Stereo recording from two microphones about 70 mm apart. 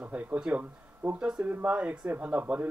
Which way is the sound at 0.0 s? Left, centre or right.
Right.